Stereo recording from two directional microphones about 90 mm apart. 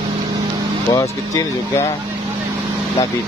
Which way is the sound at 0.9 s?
35° left (ahead or behind).